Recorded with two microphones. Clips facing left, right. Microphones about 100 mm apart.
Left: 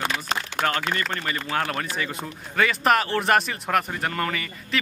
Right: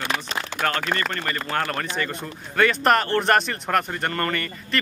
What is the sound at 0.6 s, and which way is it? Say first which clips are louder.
A man's voice: right 3 dB; 10° left (ahead or behind).